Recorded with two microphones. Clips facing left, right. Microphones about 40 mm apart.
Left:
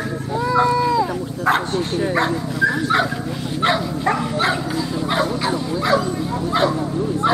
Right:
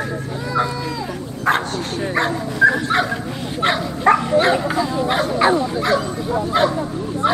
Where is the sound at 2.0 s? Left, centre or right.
Centre.